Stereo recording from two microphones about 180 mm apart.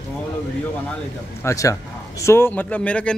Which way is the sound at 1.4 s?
15° left (ahead or behind).